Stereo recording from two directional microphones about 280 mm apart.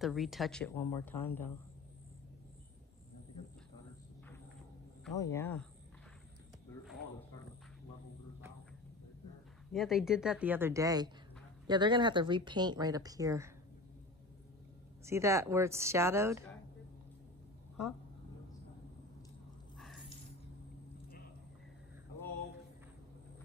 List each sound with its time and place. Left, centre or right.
0.0 s a woman's voice: centre
5.1 s a woman's voice: centre
9.7 s speech: centre
15.0 s speech: centre
19.8 s a sound: centre